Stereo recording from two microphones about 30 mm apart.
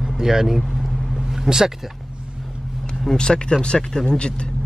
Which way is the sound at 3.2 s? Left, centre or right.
Left.